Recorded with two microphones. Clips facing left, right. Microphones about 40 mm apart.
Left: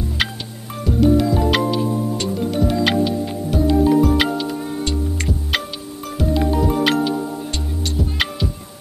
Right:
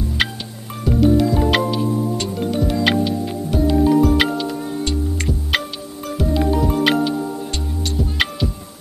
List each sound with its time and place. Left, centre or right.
0.2 s music: centre